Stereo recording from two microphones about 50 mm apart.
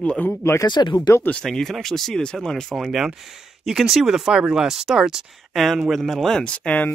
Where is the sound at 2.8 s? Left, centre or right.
Centre.